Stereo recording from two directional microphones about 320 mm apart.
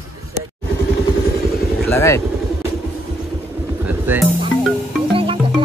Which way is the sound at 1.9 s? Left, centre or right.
Centre.